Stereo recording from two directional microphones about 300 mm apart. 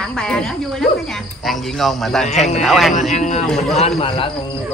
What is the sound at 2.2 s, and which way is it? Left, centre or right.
Speech, left.